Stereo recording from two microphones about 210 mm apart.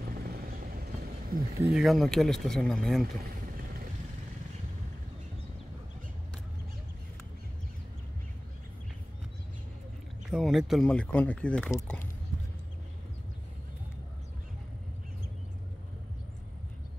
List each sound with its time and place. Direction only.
0.0 s vehicle: 45° right (ahead or behind)
1.7 s speech: centre (ahead or behind)
10.3 s speech: centre (ahead or behind)